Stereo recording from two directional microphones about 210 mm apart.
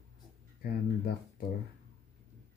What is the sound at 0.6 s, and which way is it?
Speech, 45° left (ahead or behind).